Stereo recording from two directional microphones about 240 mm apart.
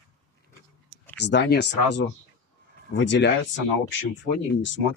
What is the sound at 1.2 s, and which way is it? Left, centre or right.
Speech, left.